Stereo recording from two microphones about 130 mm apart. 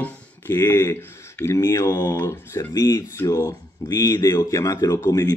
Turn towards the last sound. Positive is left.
turn(degrees=25)  # may be behind; listen again after turning